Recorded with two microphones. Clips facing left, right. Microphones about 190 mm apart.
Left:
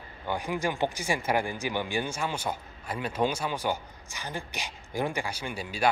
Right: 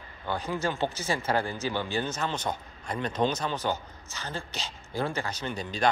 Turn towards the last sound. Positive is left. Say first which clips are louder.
# even
turn(degrees=10)  # may be behind; listen again after turning